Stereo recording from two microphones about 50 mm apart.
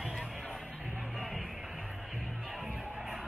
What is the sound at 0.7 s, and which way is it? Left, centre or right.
Music, centre.